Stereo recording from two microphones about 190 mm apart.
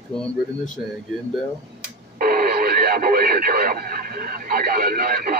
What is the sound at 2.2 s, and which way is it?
Speech, 50° right (ahead or behind).